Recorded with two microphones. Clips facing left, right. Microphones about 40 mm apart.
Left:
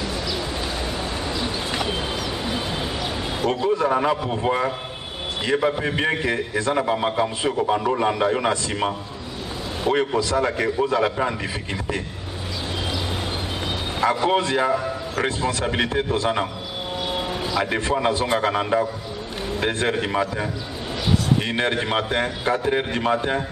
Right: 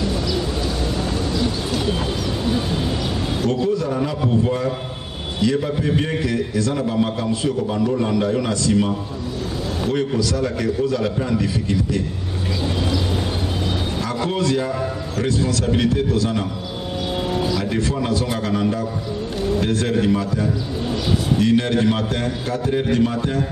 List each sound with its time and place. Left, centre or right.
1.7 s bird: left
3.4 s a man's voice: left
14.0 s a man's voice: left
17.5 s a man's voice: left